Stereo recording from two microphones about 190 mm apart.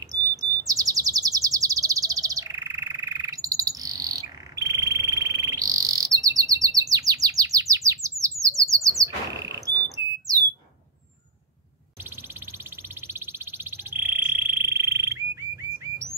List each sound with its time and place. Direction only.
0.0 s chirp: 20° right (ahead or behind)
9.8 s alarm: 15° right (ahead or behind)
12.0 s a sound: 10° right (ahead or behind)